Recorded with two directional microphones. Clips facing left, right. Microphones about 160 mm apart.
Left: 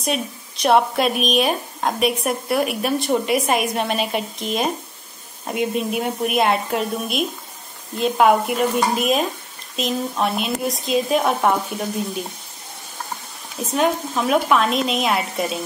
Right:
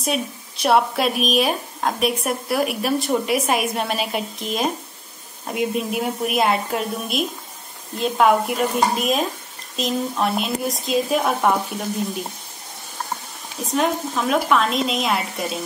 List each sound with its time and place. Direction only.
0.0 s speech: centre (ahead or behind)
13.7 s speech: 5° left (ahead or behind)